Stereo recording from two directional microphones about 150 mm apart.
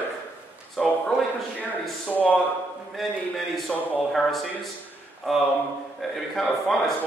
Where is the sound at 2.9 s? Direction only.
Centre (ahead or behind).